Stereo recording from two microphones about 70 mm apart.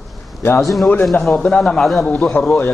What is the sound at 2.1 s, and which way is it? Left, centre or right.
Speech, left.